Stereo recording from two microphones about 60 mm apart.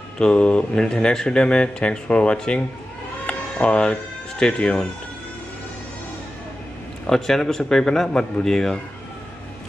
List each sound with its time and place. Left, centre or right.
0.2 s speech: centre
3.3 s a sound: centre
4.4 s speech: centre
7.1 s speech: centre